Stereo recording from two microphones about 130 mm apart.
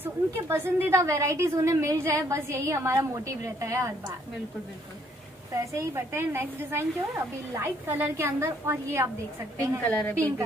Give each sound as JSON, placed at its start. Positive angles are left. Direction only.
{"t": 0.0, "sound": "a woman's voice", "side_deg": -20}
{"t": 5.5, "sound": "a woman's voice", "side_deg": -25}
{"t": 9.8, "sound": "a woman's voice", "side_deg": 5}